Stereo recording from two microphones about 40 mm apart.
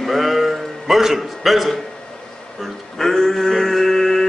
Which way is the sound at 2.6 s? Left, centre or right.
Centre.